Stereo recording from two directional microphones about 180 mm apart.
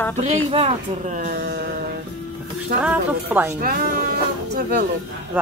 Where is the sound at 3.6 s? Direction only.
55° right (ahead or behind).